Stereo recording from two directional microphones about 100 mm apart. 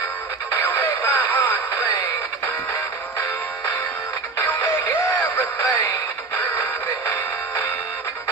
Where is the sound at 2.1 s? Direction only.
30° left (ahead or behind).